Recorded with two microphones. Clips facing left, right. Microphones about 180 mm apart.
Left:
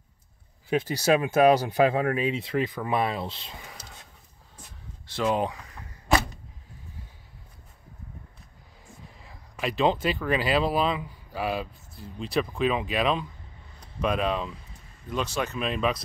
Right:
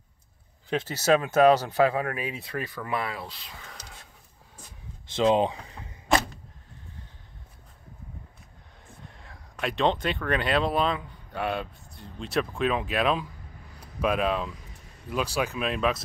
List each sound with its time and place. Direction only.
0.7 s speech: 10° left (ahead or behind)
3.6 s whispering: 5° left (ahead or behind)
5.1 s speech: 20° right (ahead or behind)
8.8 s speech: centre (ahead or behind)